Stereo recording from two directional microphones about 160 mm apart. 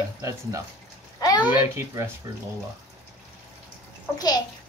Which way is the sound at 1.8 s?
15° right (ahead or behind).